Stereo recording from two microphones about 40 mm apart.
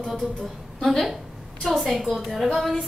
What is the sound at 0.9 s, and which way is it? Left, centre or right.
A woman's voice, centre.